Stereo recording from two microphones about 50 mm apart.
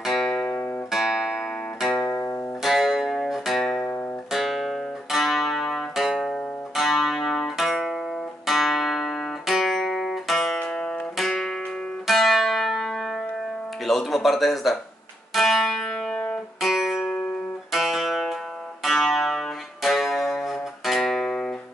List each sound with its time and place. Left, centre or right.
0.0 s guitar: centre
0.3 s guitar: left
0.9 s music: centre
1.9 s music: centre
2.6 s music: centre
4.3 s music: centre
8.5 s guitar: centre
11.1 s music: centre
13.8 s a sound: centre
15.3 s music: centre